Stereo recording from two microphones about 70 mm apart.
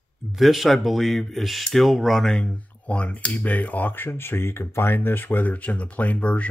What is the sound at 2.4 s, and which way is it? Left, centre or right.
Speech, centre.